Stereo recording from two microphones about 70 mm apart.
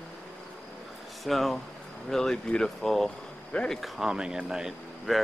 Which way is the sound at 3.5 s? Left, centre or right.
Centre.